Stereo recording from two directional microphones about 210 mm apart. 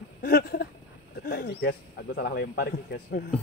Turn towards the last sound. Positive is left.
turn(degrees=45)  # may be behind; listen again after turning